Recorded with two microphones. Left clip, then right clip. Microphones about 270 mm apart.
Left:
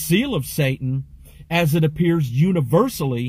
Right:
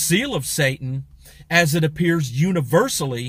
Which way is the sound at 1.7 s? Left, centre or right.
Right.